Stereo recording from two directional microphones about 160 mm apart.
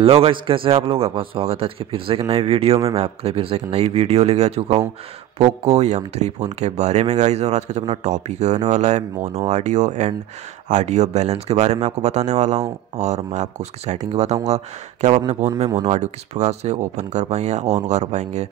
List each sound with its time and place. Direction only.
0.0 s a man's voice: 35° right (ahead or behind)